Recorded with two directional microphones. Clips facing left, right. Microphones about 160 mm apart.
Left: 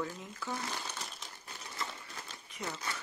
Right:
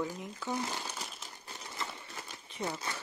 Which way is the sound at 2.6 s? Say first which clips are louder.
Right 3 dB; 15° right (ahead or behind).